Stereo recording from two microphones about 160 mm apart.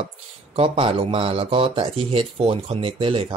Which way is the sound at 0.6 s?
35° right (ahead or behind).